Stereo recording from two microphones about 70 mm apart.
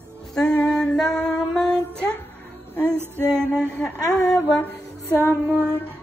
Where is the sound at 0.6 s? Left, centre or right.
Centre.